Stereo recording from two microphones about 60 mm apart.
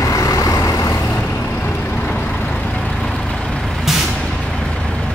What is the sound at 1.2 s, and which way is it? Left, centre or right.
Vehicle, left.